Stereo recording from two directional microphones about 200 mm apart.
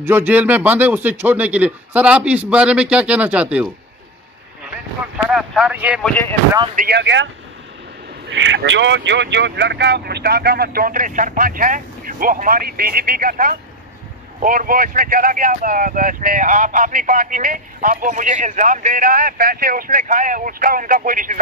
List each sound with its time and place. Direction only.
0.0 s speech: 10° right (ahead or behind)
6.0 s speech: 10° left (ahead or behind)
6.7 s speech: 40° right (ahead or behind)
7.0 s speech: 65° right (ahead or behind)
8.3 s speech: 65° right (ahead or behind); by 21.4 s 40° right (ahead or behind)